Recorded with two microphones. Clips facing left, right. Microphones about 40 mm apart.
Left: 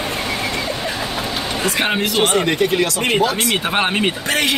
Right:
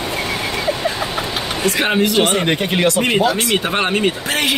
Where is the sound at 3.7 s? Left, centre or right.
Centre.